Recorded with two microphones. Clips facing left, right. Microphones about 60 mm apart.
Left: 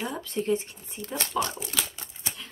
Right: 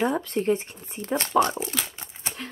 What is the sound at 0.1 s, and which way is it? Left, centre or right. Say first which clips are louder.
Speech: right 4 dB; right.